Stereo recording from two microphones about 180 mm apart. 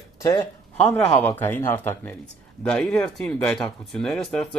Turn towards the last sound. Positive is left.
turn(degrees=5)  # may be behind; listen again after turning